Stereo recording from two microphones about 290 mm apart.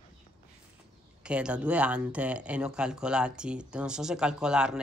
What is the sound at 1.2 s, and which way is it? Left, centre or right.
Speech, centre.